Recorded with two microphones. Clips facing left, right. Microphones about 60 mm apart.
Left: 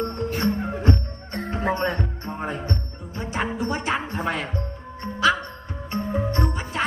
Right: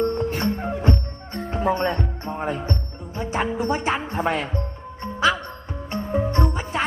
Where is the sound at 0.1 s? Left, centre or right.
Right.